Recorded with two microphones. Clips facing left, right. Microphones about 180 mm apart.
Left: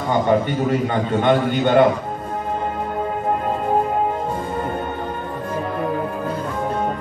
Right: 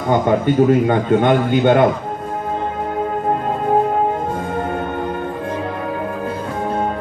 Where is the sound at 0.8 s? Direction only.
50° right (ahead or behind).